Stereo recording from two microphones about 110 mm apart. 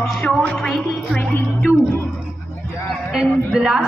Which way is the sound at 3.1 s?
5° right (ahead or behind).